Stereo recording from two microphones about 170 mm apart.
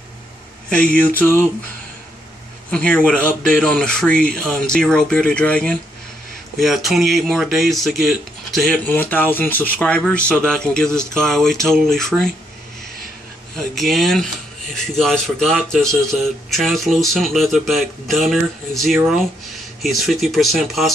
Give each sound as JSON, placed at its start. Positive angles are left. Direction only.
{"t": 1.2, "sound": "speech", "side_deg": 10}
{"t": 2.7, "sound": "speech", "side_deg": 5}
{"t": 13.6, "sound": "speech", "side_deg": 0}